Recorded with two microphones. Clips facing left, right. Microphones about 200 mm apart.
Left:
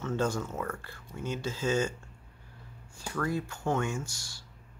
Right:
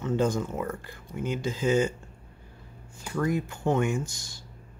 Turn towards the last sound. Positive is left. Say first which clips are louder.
# right 6 dB
turn(degrees=-20)  # may be behind; listen again after turning